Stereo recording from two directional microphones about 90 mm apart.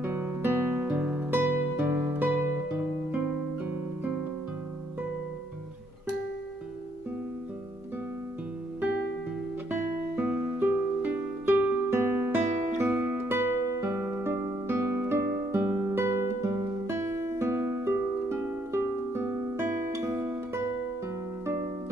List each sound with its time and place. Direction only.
0.0 s guitar: 25° right (ahead or behind)
1.3 s music: 25° right (ahead or behind)
9.7 s music: 20° right (ahead or behind)
15.9 s guitar: 30° right (ahead or behind)